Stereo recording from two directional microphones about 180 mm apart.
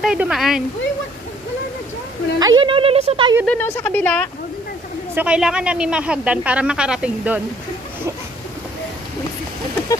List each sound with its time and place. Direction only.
0.0 s speech: 5° right (ahead or behind)
2.3 s speech: 25° right (ahead or behind)
3.4 s speech: 10° left (ahead or behind)
5.1 s a woman's voice: 5° right (ahead or behind)